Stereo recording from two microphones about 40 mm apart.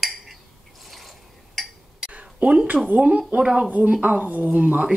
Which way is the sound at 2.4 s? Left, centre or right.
Right.